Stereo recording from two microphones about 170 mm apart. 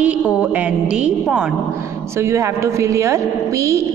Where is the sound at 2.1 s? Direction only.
15° right (ahead or behind).